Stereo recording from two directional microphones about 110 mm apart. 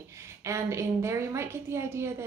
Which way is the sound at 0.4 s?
25° right (ahead or behind).